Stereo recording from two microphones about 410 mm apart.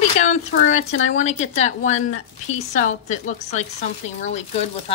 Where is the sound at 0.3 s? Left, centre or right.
Centre.